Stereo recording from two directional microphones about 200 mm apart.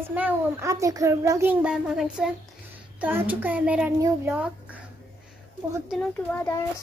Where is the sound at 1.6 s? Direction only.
5° right (ahead or behind).